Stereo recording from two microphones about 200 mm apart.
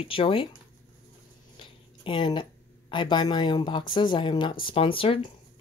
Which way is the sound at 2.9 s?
25° left (ahead or behind).